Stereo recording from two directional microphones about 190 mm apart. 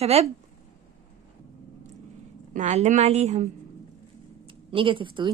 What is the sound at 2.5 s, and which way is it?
A woman's voice, 40° right (ahead or behind).